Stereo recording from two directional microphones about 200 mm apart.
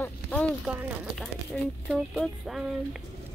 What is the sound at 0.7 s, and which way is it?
Speech, 5° right (ahead or behind).